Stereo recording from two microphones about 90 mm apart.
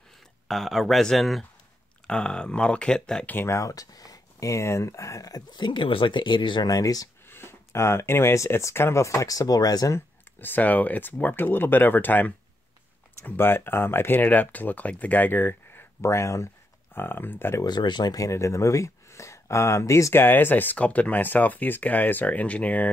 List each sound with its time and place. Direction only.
0.5 s speech: centre (ahead or behind)
3.3 s speech: 30° left (ahead or behind); by 6.7 s 60° left (ahead or behind)
6.7 s speech: 45° left (ahead or behind)
7.2 s speech: 25° left (ahead or behind); by 9.9 s 45° left (ahead or behind)
9.9 s speech: 20° left (ahead or behind)
17.6 s speech: 55° left (ahead or behind); by 22.8 s 15° left (ahead or behind)